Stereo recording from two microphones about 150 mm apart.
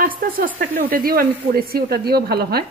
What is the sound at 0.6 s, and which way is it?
A woman's voice, 70° right (ahead or behind).